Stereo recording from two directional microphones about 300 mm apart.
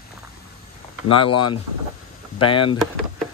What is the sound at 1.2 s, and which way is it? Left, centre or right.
Speech, left.